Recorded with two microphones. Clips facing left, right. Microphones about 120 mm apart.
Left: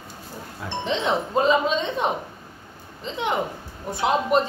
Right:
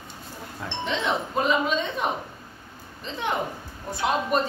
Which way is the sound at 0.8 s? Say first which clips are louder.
Left 3 dB; 25° left (ahead or behind).